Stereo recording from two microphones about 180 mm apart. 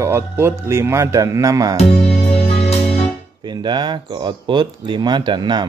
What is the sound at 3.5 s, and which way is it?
Speech, 25° right (ahead or behind).